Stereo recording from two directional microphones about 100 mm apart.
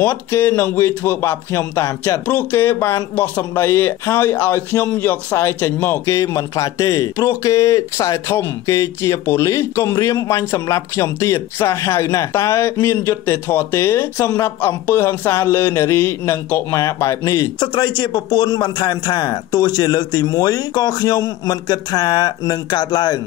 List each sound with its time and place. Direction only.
0.0 s speech: 20° left (ahead or behind)
2.2 s speech: 20° left (ahead or behind)
17.6 s a man's voice: 50° left (ahead or behind)